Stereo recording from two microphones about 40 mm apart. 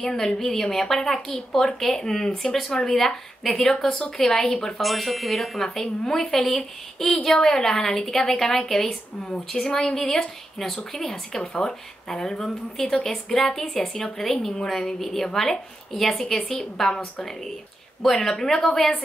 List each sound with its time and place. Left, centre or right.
0.0 s a woman's voice: centre
4.8 s a woman's voice: centre